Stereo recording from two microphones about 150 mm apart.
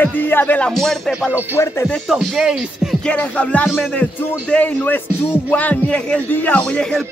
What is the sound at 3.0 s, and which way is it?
Speech, 10° left (ahead or behind).